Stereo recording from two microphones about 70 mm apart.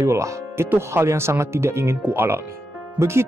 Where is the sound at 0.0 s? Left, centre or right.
Right.